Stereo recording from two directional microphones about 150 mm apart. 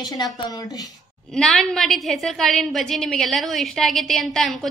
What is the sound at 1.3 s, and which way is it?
A woman's voice, 5° left (ahead or behind).